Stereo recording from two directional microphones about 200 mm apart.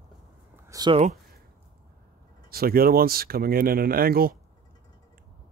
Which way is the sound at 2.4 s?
50° right (ahead or behind).